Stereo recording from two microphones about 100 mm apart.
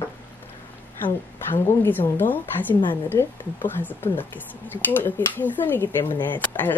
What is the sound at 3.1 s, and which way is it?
A woman's voice, 20° left (ahead or behind).